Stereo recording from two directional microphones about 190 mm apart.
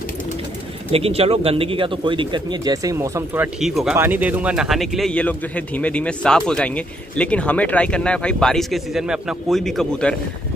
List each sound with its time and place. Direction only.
0.9 s speech: 30° right (ahead or behind); by 3.4 s 15° right (ahead or behind)
3.6 s speech: centre (ahead or behind)